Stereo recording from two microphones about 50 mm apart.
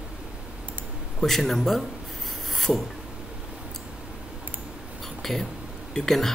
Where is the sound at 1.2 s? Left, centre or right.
Centre.